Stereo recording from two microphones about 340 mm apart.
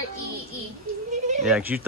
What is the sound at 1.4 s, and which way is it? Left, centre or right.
Speech, centre.